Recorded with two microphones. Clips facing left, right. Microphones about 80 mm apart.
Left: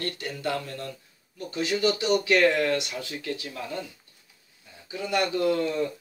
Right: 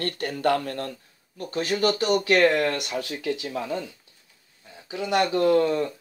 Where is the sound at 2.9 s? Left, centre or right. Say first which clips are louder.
Right 5 dB; right.